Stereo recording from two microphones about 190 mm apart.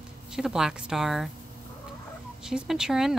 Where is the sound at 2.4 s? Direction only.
5° right (ahead or behind).